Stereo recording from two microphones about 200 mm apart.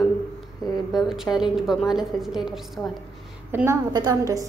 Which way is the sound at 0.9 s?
Centre (ahead or behind).